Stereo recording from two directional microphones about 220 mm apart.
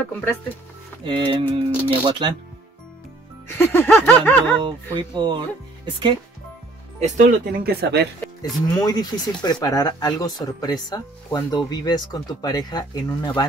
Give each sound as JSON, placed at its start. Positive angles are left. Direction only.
{"t": 0.0, "sound": "speech", "side_deg": 10}
{"t": 1.0, "sound": "music", "side_deg": -20}
{"t": 3.4, "sound": "speech", "side_deg": 10}
{"t": 4.9, "sound": "music", "side_deg": -20}
{"t": 7.0, "sound": "speech", "side_deg": -35}
{"t": 8.6, "sound": "speech", "side_deg": 20}